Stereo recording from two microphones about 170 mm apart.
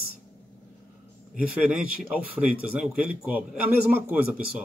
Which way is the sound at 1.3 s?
5° right (ahead or behind).